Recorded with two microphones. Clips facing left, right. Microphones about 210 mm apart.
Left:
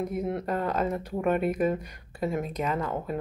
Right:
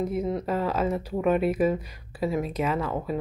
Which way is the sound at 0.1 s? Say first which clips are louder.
Right 2 dB; centre (ahead or behind).